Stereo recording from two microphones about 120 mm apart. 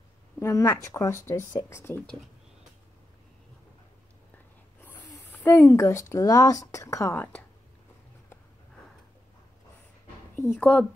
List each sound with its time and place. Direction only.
0.4 s speech: 25° left (ahead or behind)
5.3 s speech: 15° left (ahead or behind)
10.6 s speech: 10° left (ahead or behind)